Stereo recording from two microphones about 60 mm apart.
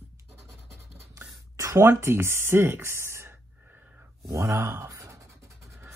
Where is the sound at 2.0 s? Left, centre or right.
Right.